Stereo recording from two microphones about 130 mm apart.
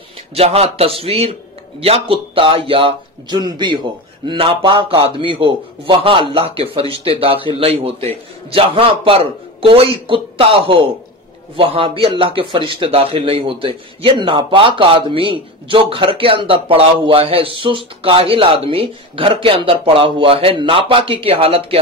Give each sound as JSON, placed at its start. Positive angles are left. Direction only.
{"t": 0.3, "sound": "a man's voice", "side_deg": -50}